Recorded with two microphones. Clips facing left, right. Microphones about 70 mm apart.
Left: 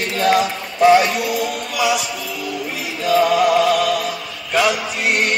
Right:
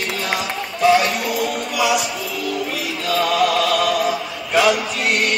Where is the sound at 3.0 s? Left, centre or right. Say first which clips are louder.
Left 4 dB; centre.